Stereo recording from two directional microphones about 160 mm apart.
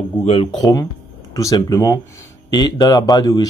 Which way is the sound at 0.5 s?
25° left (ahead or behind).